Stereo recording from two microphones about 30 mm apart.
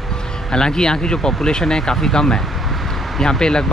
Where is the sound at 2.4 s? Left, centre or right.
Centre.